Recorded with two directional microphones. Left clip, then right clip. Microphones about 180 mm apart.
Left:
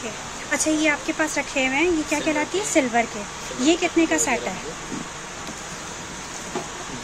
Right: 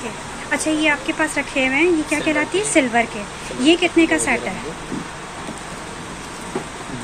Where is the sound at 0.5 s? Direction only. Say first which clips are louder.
Right 3 dB; 15° left (ahead or behind).